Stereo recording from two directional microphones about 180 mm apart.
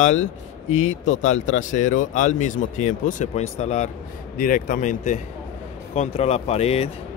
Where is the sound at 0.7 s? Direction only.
40° left (ahead or behind).